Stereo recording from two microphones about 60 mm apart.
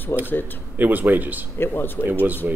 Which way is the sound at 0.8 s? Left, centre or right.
Right.